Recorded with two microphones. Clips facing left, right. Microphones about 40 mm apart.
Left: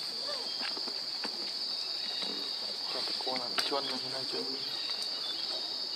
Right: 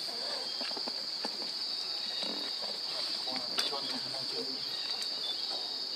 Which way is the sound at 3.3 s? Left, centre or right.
Centre.